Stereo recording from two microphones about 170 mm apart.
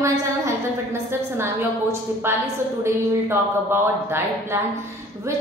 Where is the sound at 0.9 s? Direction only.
15° right (ahead or behind).